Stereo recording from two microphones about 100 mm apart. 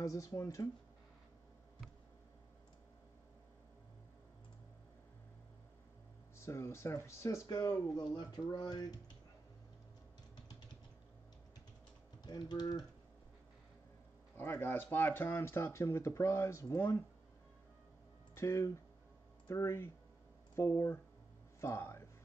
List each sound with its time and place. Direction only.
0.0 s speech: 35° left (ahead or behind)
6.3 s speech: 25° left (ahead or behind)
7.4 s speech: 40° left (ahead or behind)
12.2 s speech: 45° left (ahead or behind)
14.3 s speech: 20° left (ahead or behind)
18.3 s speech: 30° left (ahead or behind)